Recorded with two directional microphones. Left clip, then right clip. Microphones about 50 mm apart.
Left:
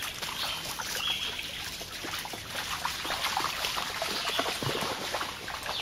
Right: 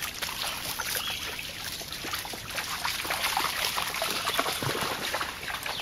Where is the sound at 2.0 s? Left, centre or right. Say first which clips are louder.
Right 1 dB; right.